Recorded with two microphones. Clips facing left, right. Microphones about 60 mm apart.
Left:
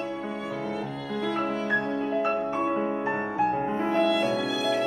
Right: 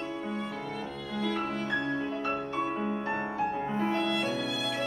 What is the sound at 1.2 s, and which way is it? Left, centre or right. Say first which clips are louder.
Music: left 4 dB; centre.